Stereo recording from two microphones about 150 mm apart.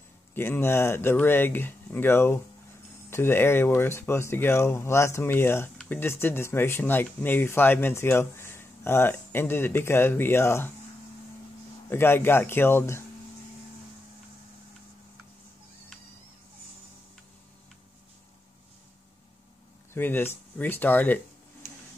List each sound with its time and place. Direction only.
0.3 s speech: 15° left (ahead or behind)
11.9 s speech: 15° left (ahead or behind)
19.9 s speech: 15° left (ahead or behind)